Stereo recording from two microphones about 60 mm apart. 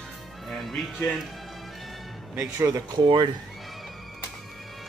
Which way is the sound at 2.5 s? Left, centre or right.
Right.